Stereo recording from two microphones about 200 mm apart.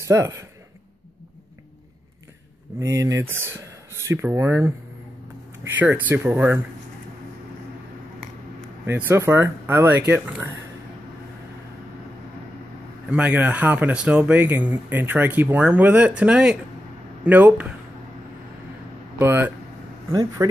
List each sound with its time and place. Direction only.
0.1 s speech: 15° right (ahead or behind)
2.8 s speech: 15° right (ahead or behind)
8.8 s speech: 10° right (ahead or behind)
13.1 s speech: 5° right (ahead or behind)
19.1 s speech: 10° right (ahead or behind)